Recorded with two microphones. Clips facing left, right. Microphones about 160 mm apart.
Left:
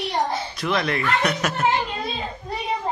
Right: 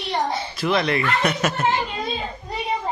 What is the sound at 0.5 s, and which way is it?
A man's voice, centre (ahead or behind).